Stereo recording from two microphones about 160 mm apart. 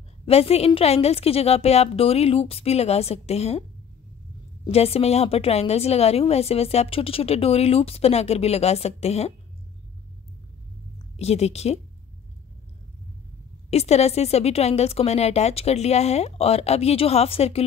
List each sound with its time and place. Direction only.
0.2 s a woman's voice: 40° left (ahead or behind)
4.6 s a woman's voice: 40° left (ahead or behind)
11.1 s a woman's voice: 40° left (ahead or behind)
13.7 s a woman's voice: 40° left (ahead or behind)